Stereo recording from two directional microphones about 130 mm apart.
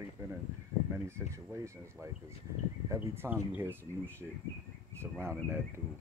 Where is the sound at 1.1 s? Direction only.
20° right (ahead or behind).